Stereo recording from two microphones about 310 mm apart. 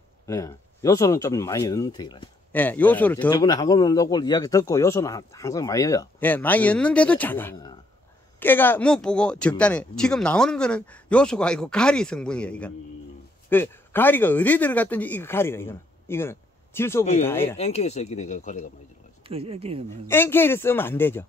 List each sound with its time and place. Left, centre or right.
0.3 s speech: centre
17.6 s speech: left
19.2 s speech: centre
20.1 s speech: centre